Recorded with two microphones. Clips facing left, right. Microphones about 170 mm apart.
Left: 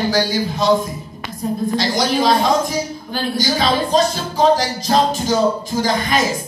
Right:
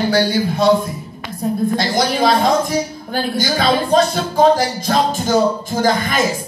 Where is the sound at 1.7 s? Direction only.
50° right (ahead or behind).